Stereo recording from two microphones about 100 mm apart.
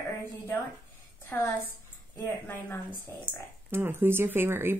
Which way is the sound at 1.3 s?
20° left (ahead or behind).